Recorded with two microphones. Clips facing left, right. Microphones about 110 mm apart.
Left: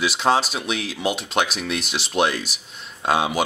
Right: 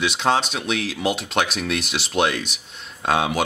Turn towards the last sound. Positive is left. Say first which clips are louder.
# even
turn(degrees=0)  # may be behind; listen again after turning